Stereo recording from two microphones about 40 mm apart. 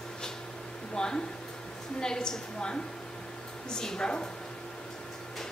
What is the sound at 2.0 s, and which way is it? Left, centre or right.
A woman's voice, centre.